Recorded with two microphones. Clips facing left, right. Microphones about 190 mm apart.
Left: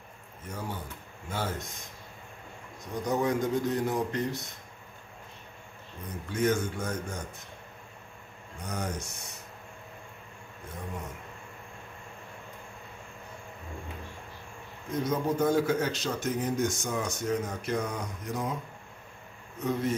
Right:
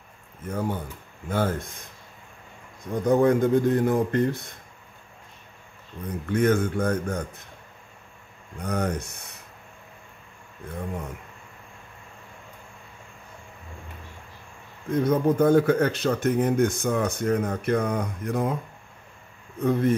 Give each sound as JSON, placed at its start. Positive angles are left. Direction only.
{"t": 0.5, "sound": "speech", "side_deg": -55}
{"t": 2.8, "sound": "speech", "side_deg": -55}
{"t": 6.3, "sound": "speech", "side_deg": -60}
{"t": 8.5, "sound": "speech", "side_deg": -60}
{"t": 14.9, "sound": "speech", "side_deg": -55}
{"t": 19.6, "sound": "speech", "side_deg": -55}